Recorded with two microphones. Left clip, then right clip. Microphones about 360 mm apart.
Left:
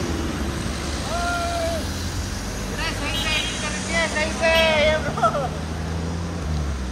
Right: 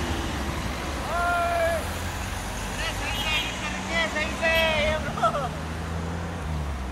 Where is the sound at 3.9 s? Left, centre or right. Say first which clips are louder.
Left 4 dB; centre.